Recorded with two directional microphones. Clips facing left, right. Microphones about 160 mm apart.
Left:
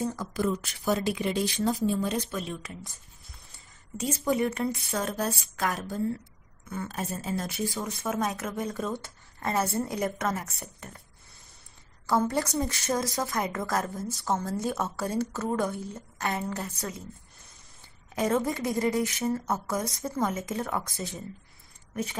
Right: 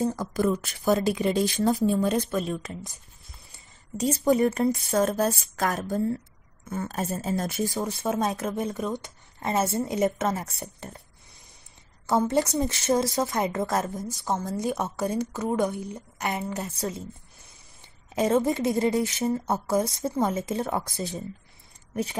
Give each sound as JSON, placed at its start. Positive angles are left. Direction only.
{"t": 0.0, "sound": "a woman's voice", "side_deg": -40}
{"t": 4.0, "sound": "a woman's voice", "side_deg": -35}
{"t": 7.8, "sound": "a woman's voice", "side_deg": -30}
{"t": 12.3, "sound": "a woman's voice", "side_deg": -20}
{"t": 16.7, "sound": "a woman's voice", "side_deg": -30}
{"t": 18.1, "sound": "a woman's voice", "side_deg": -25}